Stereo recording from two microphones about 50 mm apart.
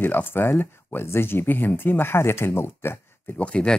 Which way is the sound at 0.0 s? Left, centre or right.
Left.